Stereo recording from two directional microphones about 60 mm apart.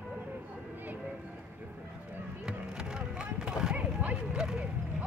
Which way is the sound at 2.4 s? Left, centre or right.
Centre.